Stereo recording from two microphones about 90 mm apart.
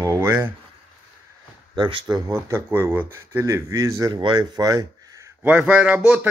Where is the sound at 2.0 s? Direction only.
40° right (ahead or behind).